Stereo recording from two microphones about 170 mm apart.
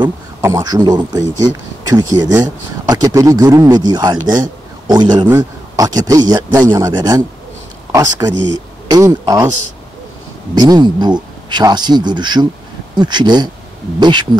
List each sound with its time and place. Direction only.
0.4 s speech: 20° right (ahead or behind)
10.5 s speech: 25° right (ahead or behind)